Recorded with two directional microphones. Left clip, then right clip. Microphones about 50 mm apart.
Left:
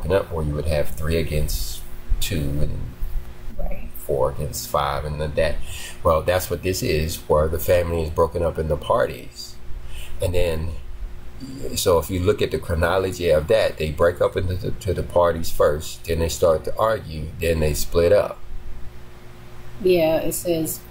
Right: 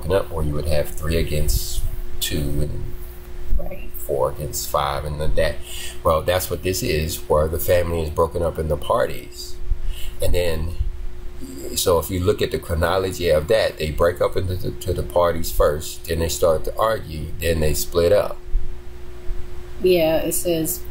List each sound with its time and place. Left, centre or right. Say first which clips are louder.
0.4 s speech: even; left
4.1 s speech: even; left
4.5 s speech: right 1 dB; left
11.7 s speech: even; left
19.8 s a woman's voice: right 1 dB; right